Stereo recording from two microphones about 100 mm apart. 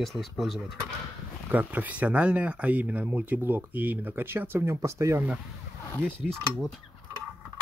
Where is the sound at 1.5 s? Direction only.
15° right (ahead or behind); by 5.2 s 30° right (ahead or behind).